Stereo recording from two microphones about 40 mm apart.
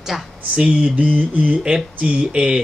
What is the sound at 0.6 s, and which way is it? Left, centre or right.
Speech, right.